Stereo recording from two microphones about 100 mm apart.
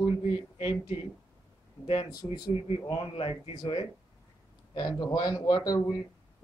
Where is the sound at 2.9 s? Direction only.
65° left (ahead or behind).